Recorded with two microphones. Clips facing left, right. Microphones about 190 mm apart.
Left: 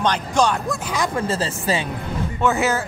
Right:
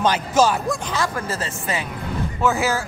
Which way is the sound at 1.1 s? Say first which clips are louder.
Left 4 dB; 30° left (ahead or behind).